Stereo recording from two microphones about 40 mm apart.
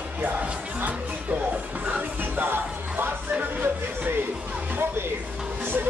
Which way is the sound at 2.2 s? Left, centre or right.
Right.